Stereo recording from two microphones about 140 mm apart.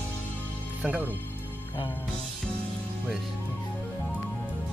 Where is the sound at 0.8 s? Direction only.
10° right (ahead or behind).